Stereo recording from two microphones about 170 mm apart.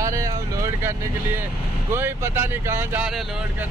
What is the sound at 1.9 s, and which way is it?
Speech, 15° right (ahead or behind).